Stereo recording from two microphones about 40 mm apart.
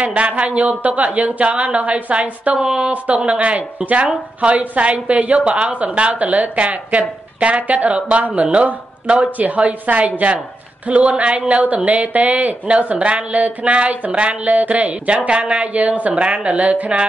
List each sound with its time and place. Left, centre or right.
0.0 s a woman's voice: right
2.5 s speech: right
3.3 s a woman's voice: right